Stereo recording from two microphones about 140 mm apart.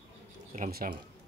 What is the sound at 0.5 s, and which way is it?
Speech, 80° right.